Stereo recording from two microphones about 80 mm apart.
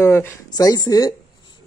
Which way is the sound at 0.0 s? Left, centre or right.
Left.